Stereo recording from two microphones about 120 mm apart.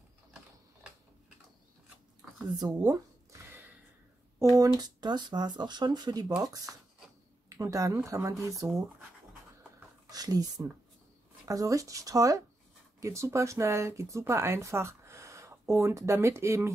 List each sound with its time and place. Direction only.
2.6 s speech: 30° right (ahead or behind)
4.6 s speech: 35° right (ahead or behind)
7.4 s speech: 25° right (ahead or behind)
10.0 s speech: 30° right (ahead or behind)